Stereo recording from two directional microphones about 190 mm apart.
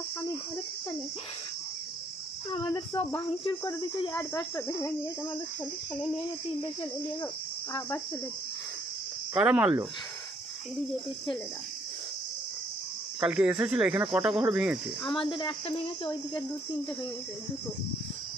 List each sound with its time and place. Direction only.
2.5 s speech: 20° left (ahead or behind)
4.1 s cricket: 5° left (ahead or behind)
6.6 s speech: 25° left (ahead or behind)
9.3 s speech: 5° right (ahead or behind)
13.2 s speech: 5° right (ahead or behind)
15.2 s speech: 25° left (ahead or behind)